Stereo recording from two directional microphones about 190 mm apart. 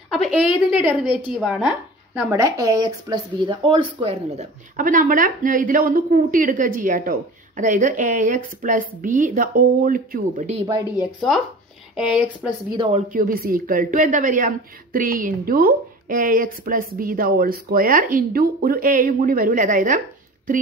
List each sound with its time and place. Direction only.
0.1 s a woman's voice: 5° right (ahead or behind); by 4.5 s 30° right (ahead or behind)
4.7 s a woman's voice: 45° right (ahead or behind)
11.1 s a woman's voice: centre (ahead or behind)
12.7 s speech: 30° right (ahead or behind)
13.1 s a woman's voice: 50° right (ahead or behind)